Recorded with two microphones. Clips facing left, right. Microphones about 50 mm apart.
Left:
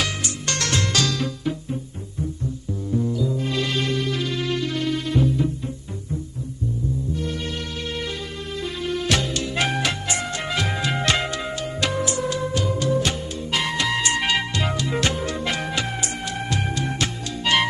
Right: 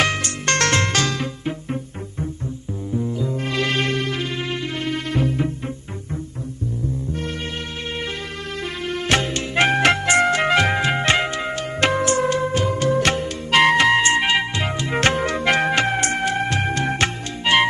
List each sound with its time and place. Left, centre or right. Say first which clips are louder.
0.0 s music: right 6 dB; right
3.1 s music: left 1 dB; right
3.3 s music: right 2 dB; right
4.2 s music: left 1 dB; right
4.9 s music: right 1 dB; right
8.8 s music: left 1 dB; right
9.1 s music: right 7 dB; right
10.8 s music: right 4 dB; right
11.5 s music: right 6 dB; right
13.8 s music: right 6 dB; right
14.9 s music: right 4 dB; right
17.5 s music: right 3 dB; right